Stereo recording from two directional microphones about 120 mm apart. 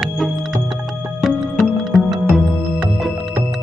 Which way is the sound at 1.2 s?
Centre (ahead or behind).